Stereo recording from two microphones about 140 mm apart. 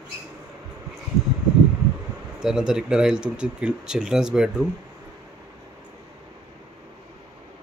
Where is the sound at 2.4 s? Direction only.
5° right (ahead or behind).